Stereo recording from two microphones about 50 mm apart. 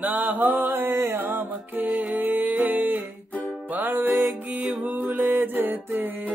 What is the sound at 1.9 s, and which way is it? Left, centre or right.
Music, right.